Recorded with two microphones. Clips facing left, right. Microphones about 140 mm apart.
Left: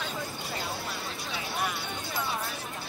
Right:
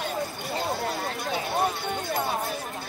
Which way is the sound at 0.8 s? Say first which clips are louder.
Right 7 dB; 55° right (ahead or behind).